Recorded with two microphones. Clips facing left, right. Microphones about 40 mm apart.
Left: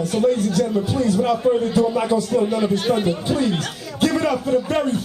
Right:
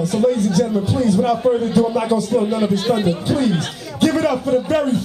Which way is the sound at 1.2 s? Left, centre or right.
Centre.